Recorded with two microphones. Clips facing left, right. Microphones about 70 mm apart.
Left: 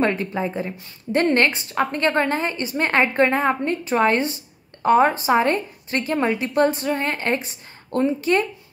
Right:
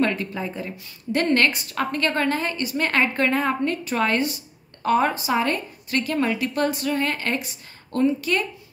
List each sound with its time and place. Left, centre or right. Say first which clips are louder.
0.0 s a woman's voice: left 2 dB; left